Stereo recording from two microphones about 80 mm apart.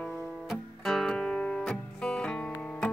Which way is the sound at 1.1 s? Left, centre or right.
Centre.